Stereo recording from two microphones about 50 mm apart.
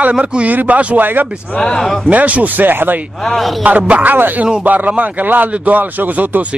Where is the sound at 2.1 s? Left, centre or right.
Right.